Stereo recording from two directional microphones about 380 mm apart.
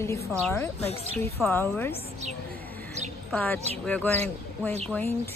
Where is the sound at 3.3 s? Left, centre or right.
Centre.